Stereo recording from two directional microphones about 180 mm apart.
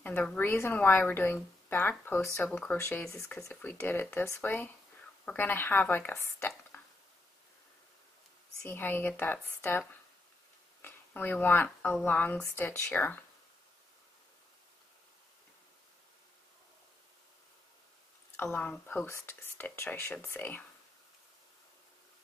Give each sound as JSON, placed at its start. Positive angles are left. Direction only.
{"t": 0.0, "sound": "a woman's voice", "side_deg": 10}
{"t": 8.6, "sound": "a woman's voice", "side_deg": 10}
{"t": 18.3, "sound": "a woman's voice", "side_deg": 10}